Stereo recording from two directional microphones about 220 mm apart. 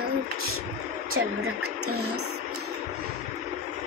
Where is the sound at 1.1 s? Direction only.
85° right.